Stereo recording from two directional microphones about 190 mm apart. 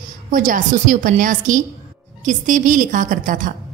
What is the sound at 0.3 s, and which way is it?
A woman's voice, 45° right (ahead or behind).